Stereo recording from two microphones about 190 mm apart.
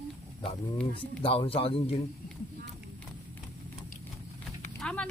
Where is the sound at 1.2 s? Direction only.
30° left (ahead or behind).